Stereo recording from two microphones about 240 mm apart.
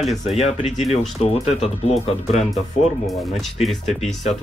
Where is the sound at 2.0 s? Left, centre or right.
Left.